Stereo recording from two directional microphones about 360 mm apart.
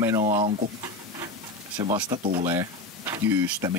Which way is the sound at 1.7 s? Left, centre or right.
Centre.